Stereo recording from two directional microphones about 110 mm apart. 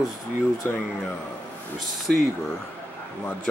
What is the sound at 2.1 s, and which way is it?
Speech, 5° left (ahead or behind).